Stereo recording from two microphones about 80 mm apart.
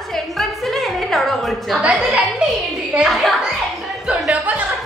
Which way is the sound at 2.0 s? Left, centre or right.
Centre.